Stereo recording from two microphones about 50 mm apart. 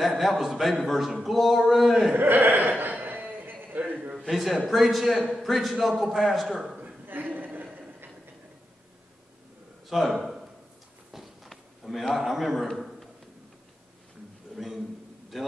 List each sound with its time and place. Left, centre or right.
0.1 s a man's voice: centre
2.1 s speech: right
2.8 s a sound: right
4.3 s a man's voice: centre
7.1 s chuckle: right
9.8 s a sound: centre
11.4 s a man's voice: centre
14.5 s a sound: centre
15.3 s a man's voice: centre